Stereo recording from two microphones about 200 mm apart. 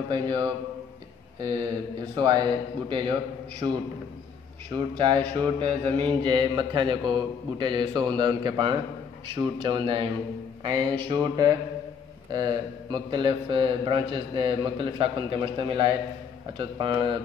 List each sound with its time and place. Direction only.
0.1 s mantra: 20° right (ahead or behind)